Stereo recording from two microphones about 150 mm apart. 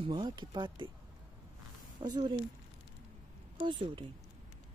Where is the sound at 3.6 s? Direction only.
35° right (ahead or behind).